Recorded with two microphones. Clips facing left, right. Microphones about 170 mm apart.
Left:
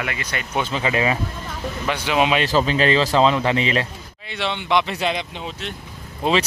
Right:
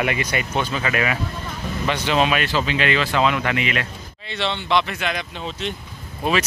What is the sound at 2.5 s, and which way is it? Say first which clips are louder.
Speech: left 4 dB; 35° left (ahead or behind).